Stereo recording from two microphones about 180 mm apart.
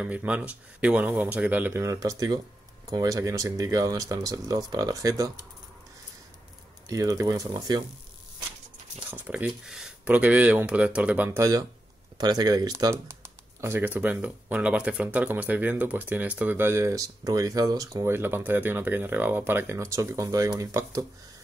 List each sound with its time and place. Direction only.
0.0 s speech: 10° right (ahead or behind)
6.9 s speech: 20° right (ahead or behind)
9.1 s speech: 10° right (ahead or behind)